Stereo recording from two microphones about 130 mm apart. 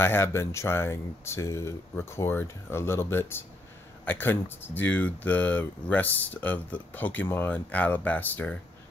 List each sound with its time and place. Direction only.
0.0 s speech: 20° left (ahead or behind)